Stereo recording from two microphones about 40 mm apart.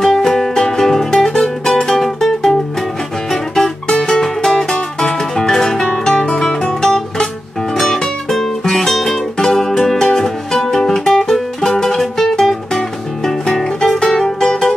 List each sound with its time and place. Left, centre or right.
0.0 s music: centre